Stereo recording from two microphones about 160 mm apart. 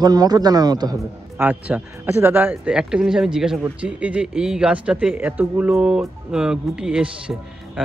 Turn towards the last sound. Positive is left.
turn(degrees=-5)  # may be behind; listen again after turning